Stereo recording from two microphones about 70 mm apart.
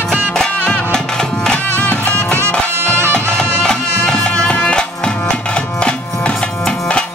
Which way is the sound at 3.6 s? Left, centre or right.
Centre.